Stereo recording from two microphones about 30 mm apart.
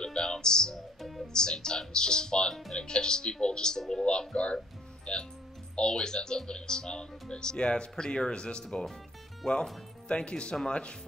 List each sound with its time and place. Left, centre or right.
0.0 s music: left
1.2 s speech: left
9.4 s speech: centre
10.0 s speech: left